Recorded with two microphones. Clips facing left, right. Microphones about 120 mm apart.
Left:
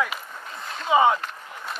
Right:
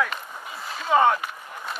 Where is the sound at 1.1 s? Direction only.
5° right (ahead or behind).